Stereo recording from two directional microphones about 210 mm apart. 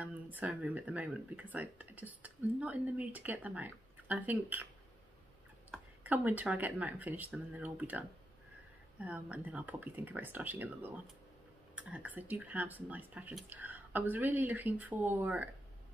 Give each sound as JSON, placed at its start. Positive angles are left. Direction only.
{"t": 0.0, "sound": "speech", "side_deg": -5}
{"t": 5.7, "sound": "a sound", "side_deg": 5}
{"t": 6.0, "sound": "speech", "side_deg": -10}